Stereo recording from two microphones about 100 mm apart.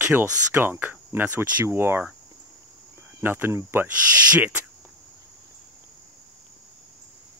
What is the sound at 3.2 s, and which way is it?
Speech, 20° right (ahead or behind).